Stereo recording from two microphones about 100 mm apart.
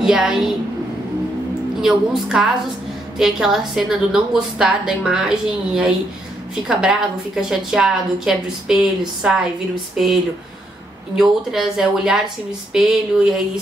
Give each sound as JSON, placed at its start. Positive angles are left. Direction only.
{"t": 0.0, "sound": "a woman's voice", "side_deg": -5}
{"t": 1.8, "sound": "a woman's voice", "side_deg": -5}
{"t": 11.1, "sound": "a woman's voice", "side_deg": -5}